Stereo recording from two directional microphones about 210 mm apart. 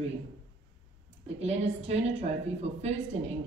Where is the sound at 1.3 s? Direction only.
30° right (ahead or behind).